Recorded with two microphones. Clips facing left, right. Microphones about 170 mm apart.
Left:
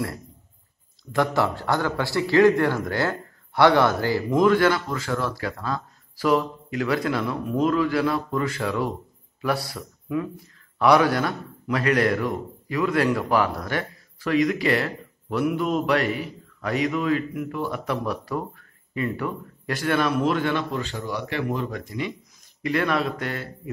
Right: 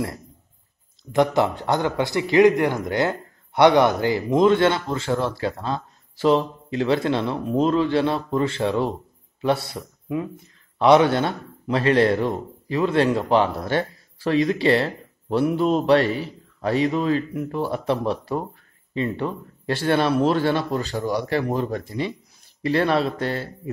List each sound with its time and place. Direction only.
1.1 s speech: 20° right (ahead or behind)